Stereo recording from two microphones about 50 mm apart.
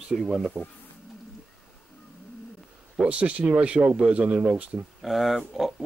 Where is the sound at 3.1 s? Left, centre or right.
Right.